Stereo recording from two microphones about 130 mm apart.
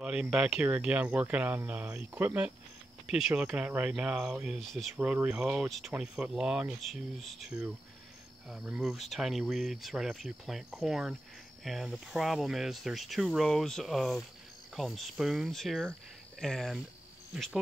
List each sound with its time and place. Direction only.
0.0 s speech: 5° right (ahead or behind)